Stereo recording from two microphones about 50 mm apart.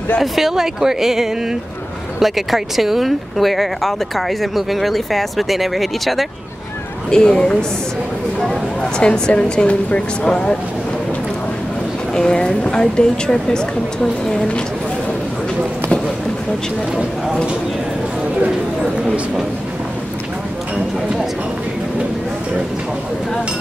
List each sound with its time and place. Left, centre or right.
0.2 s speech: centre
7.1 s speech: centre
9.0 s a woman's voice: centre
12.2 s a woman's voice: centre
20.7 s clip-clop: centre